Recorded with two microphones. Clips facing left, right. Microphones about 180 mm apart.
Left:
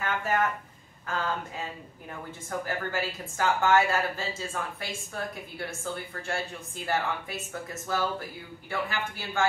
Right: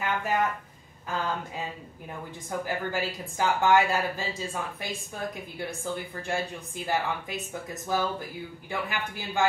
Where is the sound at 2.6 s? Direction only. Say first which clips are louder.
Right 2 dB; 15° right (ahead or behind).